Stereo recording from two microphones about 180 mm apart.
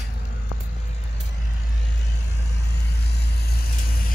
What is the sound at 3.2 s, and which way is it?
Vehicle, 60° left (ahead or behind).